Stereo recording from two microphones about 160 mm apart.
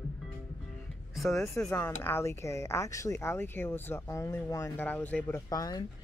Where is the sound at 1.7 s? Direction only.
15° left (ahead or behind).